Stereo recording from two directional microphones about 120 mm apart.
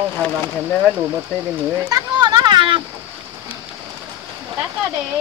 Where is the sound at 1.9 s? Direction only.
35° right (ahead or behind).